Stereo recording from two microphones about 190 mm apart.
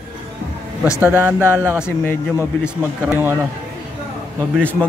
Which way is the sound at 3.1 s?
10° right (ahead or behind).